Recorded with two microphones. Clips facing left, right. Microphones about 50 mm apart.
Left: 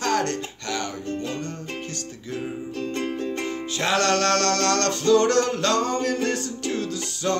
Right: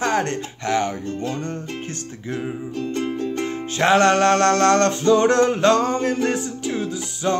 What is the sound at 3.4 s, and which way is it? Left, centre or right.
Music, right.